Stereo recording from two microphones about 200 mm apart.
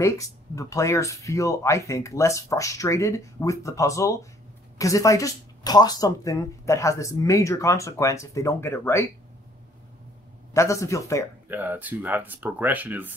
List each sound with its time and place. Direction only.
0.0 s speech: 15° left (ahead or behind)
10.5 s speech: 15° left (ahead or behind)
11.4 s speech: 10° right (ahead or behind)